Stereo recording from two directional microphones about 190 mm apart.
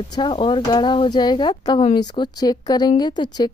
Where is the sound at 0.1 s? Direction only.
25° left (ahead or behind).